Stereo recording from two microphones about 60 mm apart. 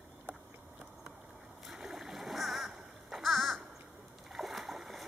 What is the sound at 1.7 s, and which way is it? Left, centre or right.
Splash, centre.